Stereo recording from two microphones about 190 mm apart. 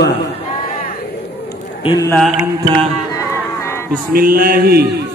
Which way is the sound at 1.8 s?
20° left (ahead or behind).